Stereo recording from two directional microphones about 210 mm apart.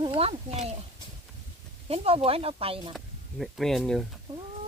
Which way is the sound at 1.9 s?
30° right (ahead or behind).